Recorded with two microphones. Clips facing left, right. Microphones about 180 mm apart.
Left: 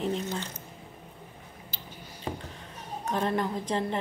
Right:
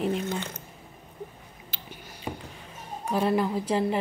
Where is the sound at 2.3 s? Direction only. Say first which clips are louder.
Even; 10° right (ahead or behind).